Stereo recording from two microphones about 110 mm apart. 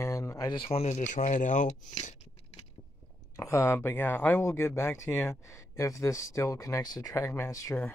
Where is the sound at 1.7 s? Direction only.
90° left.